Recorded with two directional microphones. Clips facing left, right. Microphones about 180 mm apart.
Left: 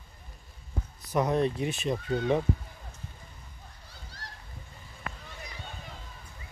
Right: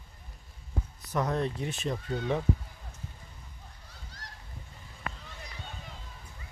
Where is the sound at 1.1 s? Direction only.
15° left (ahead or behind).